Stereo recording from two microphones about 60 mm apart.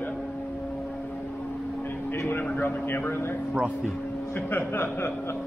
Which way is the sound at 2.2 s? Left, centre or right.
Left.